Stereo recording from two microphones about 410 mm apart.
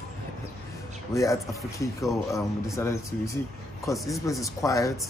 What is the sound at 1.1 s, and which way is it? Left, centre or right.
A man's voice, centre.